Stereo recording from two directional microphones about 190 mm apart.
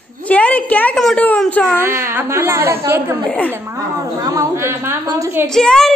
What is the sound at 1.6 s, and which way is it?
A woman's voice, 10° right (ahead or behind).